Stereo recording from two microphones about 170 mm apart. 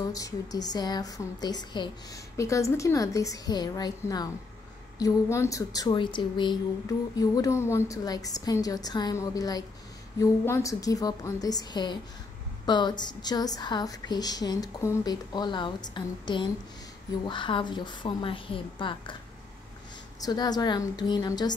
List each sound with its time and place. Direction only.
0.1 s speech: 20° left (ahead or behind)
20.2 s speech: 25° left (ahead or behind)